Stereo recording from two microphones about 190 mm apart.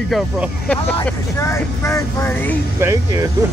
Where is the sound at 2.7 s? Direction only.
15° right (ahead or behind).